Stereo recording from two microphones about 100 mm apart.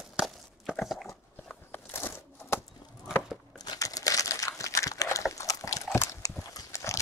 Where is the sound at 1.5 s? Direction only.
20° left (ahead or behind).